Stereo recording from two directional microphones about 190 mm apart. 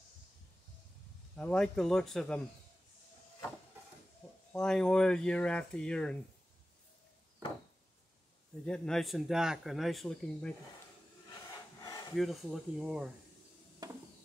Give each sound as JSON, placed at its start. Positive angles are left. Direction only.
{"t": 1.3, "sound": "speech", "side_deg": 5}
{"t": 4.5, "sound": "speech", "side_deg": 5}
{"t": 8.6, "sound": "speech", "side_deg": 5}
{"t": 12.2, "sound": "speech", "side_deg": 0}
{"t": 13.8, "sound": "a sound", "side_deg": -20}